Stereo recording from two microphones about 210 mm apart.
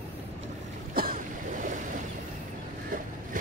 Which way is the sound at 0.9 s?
40° right (ahead or behind).